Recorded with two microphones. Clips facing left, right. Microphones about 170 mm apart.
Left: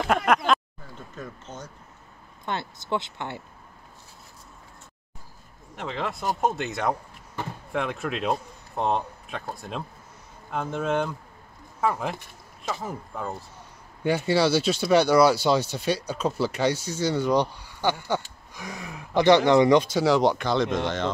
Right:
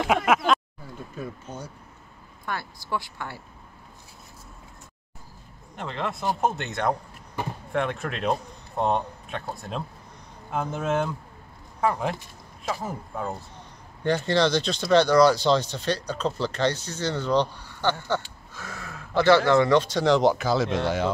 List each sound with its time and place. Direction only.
0.0 s a sound: 5° right (ahead or behind)
2.4 s speech: 25° left (ahead or behind)
5.8 s speech: centre (ahead or behind)
7.4 s speech: 15° right (ahead or behind)
7.7 s speech: centre (ahead or behind)
14.0 s speech: 10° left (ahead or behind); by 21.1 s 10° right (ahead or behind)